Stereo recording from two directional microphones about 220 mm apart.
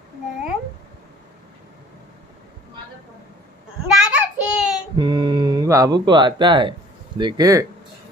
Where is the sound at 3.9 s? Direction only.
5° right (ahead or behind).